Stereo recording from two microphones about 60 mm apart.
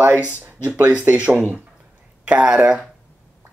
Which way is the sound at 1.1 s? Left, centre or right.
Centre.